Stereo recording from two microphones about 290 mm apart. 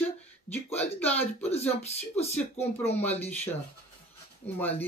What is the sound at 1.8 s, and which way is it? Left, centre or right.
Speech, left.